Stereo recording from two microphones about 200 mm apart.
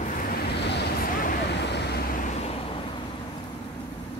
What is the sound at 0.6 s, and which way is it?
Vehicle, 60° left (ahead or behind).